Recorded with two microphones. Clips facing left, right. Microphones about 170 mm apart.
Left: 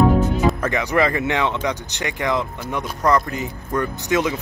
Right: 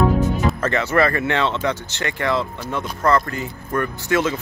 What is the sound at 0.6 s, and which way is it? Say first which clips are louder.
Speech: right 1 dB; 15° left (ahead or behind).